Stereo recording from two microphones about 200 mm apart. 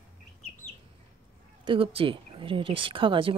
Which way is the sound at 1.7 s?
25° right (ahead or behind).